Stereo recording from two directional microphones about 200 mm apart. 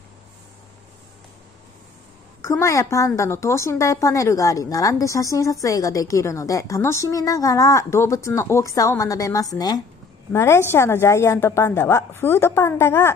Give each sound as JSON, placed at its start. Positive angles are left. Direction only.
{"t": 2.6, "sound": "a woman's voice", "side_deg": 15}